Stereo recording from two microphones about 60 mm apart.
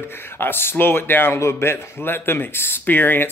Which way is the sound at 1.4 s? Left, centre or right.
Left.